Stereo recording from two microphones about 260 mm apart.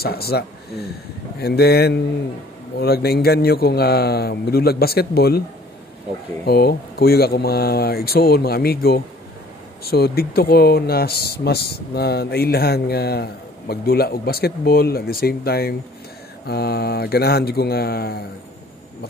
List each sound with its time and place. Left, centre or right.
0.0 s speech: left
6.4 s speech: left